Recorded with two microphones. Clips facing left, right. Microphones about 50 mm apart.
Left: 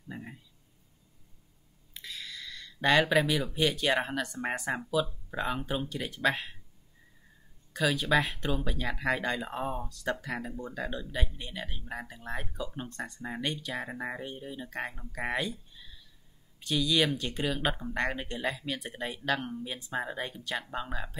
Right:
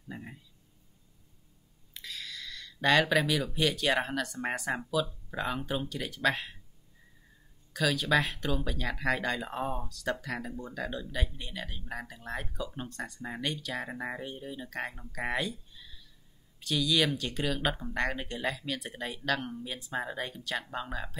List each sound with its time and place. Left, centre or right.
0.1 s speech: centre
2.0 s speech: centre
7.7 s speech: centre
15.7 s a sound: centre
16.5 s speech: centre